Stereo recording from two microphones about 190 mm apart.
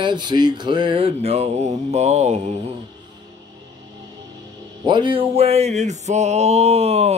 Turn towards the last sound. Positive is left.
turn(degrees=-35)  # may be behind; listen again after turning